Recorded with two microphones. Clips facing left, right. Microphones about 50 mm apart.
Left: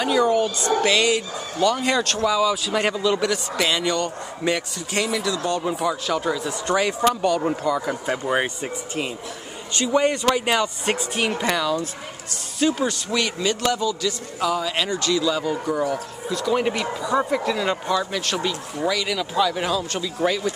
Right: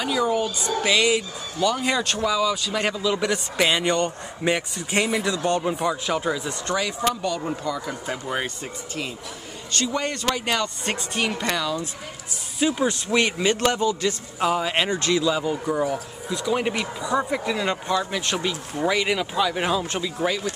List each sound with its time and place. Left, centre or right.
0.0 s speech: centre
3.2 s speech: right
5.6 s speech: centre
6.7 s speech: centre
9.7 s speech: centre
12.5 s speech: centre
12.8 s a man's voice: right
18.9 s speech: right
19.3 s speech: centre
20.2 s speech: centre